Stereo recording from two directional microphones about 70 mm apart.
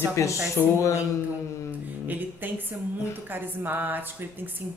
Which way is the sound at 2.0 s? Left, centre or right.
Right.